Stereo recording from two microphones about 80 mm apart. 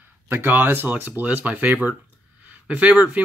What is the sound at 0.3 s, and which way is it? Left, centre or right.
Speech, right.